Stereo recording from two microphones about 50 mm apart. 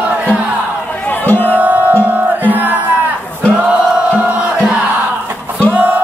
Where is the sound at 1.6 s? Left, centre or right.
Right.